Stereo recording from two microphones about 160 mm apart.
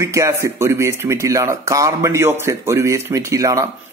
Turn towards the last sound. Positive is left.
turn(degrees=-20)  # may be behind; listen again after turning